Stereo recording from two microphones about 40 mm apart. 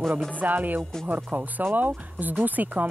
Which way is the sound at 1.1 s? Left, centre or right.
Right.